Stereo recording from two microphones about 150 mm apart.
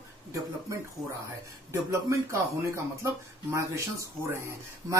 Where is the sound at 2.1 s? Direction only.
20° right (ahead or behind).